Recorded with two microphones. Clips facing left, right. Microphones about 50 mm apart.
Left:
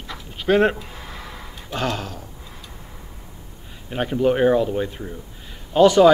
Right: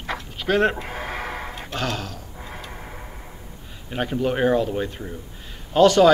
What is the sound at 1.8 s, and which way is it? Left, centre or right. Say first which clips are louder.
Speech: left 3 dB; left.